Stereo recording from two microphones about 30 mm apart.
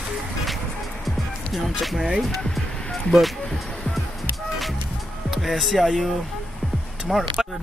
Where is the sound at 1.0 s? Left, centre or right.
Centre.